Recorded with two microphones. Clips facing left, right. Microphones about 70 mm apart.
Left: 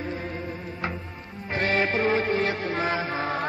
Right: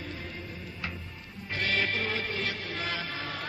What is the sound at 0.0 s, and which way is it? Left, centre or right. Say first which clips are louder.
Music: left 8 dB; left.